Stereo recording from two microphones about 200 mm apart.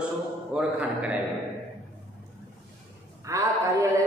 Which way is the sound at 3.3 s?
15° right (ahead or behind).